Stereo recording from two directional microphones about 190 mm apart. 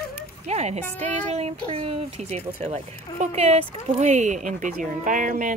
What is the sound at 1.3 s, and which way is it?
Speech, 35° right (ahead or behind).